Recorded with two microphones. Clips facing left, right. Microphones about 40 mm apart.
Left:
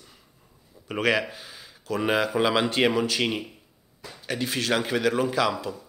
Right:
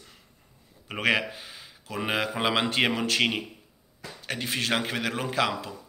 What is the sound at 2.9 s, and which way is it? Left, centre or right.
Speech, right.